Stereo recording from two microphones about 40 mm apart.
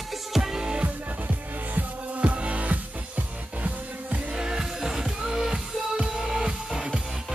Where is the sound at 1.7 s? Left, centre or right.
Right.